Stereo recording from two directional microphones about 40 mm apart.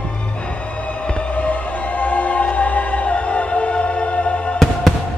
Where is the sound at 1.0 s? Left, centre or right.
Left.